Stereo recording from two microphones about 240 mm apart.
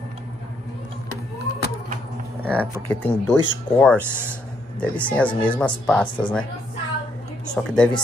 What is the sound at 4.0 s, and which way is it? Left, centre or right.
Speech, centre.